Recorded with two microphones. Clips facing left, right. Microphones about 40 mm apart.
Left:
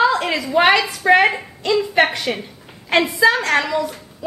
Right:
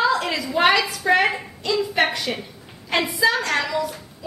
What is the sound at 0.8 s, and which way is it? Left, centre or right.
Speech, centre.